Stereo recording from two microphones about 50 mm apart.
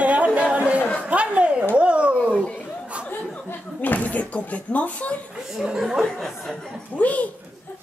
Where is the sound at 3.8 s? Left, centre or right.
Left.